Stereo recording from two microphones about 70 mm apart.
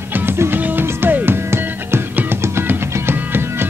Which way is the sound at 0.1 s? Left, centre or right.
Right.